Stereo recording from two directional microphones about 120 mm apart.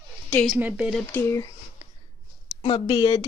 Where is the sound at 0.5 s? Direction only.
10° right (ahead or behind).